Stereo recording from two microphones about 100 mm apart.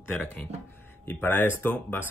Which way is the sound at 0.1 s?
15° left (ahead or behind).